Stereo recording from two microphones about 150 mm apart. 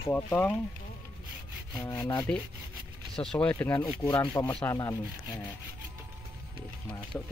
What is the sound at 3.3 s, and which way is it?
Speech, 10° left (ahead or behind).